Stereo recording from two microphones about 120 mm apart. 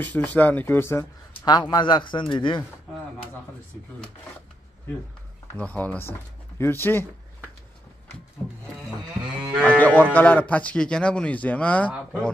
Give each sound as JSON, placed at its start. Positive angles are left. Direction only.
{"t": 0.0, "sound": "speech", "side_deg": 10}
{"t": 1.4, "sound": "speech", "side_deg": 35}
{"t": 5.5, "sound": "speech", "side_deg": 15}
{"t": 9.6, "sound": "cattle", "side_deg": 10}
{"t": 10.1, "sound": "speech", "side_deg": 10}